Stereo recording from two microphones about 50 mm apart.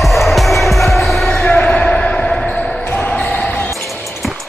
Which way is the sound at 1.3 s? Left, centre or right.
Left.